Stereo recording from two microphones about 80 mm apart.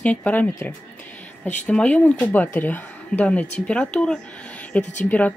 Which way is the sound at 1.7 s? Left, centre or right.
Centre.